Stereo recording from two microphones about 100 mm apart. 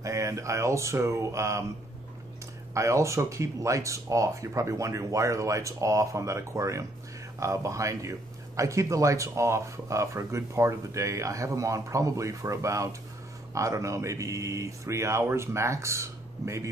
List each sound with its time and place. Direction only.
0.0 s speech: 30° right (ahead or behind)
2.7 s speech: 30° right (ahead or behind)